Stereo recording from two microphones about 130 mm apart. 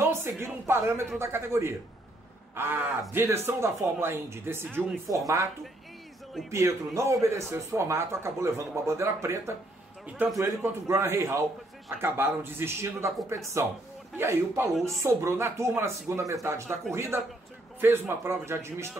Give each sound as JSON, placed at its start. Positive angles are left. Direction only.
{"t": 0.0, "sound": "speech", "side_deg": -20}
{"t": 6.5, "sound": "a man's voice", "side_deg": -25}
{"t": 14.7, "sound": "speech", "side_deg": 0}
{"t": 15.0, "sound": "speech", "side_deg": -20}